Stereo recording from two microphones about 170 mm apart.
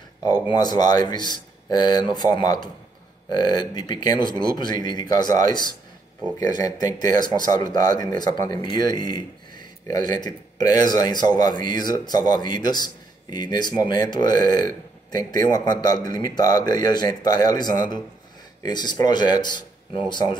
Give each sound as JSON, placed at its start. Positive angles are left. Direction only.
{"t": 0.3, "sound": "speech", "side_deg": 25}